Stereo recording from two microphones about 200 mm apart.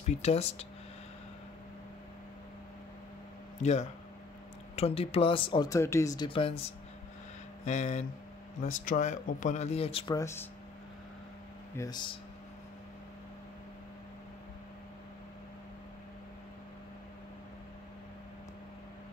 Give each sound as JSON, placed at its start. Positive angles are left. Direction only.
{"t": 0.0, "sound": "speech", "side_deg": 30}
{"t": 4.7, "sound": "speech", "side_deg": 30}
{"t": 7.6, "sound": "speech", "side_deg": 35}
{"t": 10.1, "sound": "speech", "side_deg": 15}
{"t": 11.7, "sound": "speech", "side_deg": 20}